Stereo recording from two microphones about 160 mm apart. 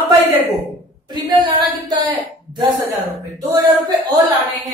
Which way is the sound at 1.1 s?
25° right (ahead or behind).